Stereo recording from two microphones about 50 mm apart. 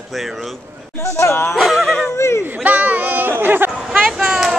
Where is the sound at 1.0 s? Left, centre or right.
Left.